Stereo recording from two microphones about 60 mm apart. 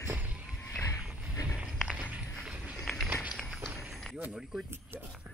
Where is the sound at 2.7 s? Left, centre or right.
Centre.